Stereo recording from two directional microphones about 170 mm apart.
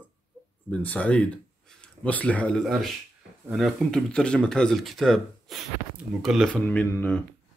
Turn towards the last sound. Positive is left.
turn(degrees=10)  # may be behind; listen again after turning